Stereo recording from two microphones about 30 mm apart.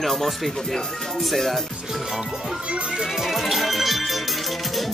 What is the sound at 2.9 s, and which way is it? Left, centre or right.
Speech, centre.